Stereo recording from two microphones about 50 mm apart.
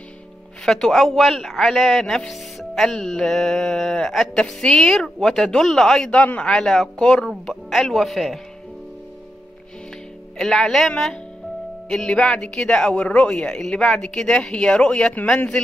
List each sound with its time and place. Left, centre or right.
0.7 s a man's voice: centre
7.7 s a man's voice: centre
10.3 s speech: centre
11.9 s speech: centre